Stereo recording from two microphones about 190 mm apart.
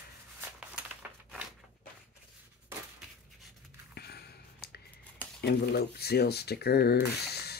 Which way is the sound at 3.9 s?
55° left (ahead or behind).